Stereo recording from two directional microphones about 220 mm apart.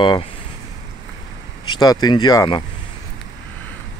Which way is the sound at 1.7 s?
20° left (ahead or behind).